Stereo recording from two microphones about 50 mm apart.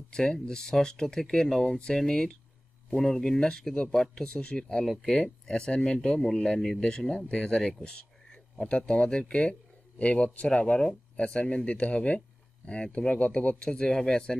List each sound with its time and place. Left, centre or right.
0.1 s speech: centre
13.2 s speech: left
13.6 s speech: centre